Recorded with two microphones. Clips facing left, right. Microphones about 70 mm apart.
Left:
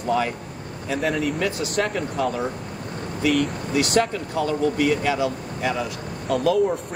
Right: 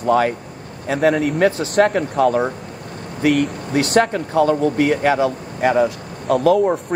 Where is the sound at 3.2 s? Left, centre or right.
Right.